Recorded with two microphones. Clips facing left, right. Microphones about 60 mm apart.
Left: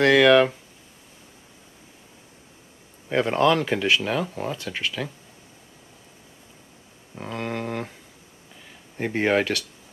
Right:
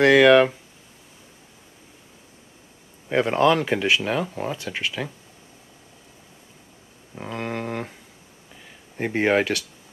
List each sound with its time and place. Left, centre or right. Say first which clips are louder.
0.0 s speech: right 2 dB; centre
3.1 s speech: right 1 dB; centre
7.2 s a sound: even; centre
8.9 s speech: right 1 dB; centre